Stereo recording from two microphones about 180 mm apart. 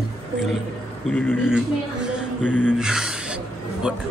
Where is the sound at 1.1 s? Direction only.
10° left (ahead or behind).